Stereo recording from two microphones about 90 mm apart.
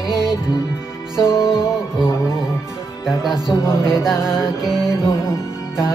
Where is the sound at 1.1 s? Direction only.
30° left (ahead or behind).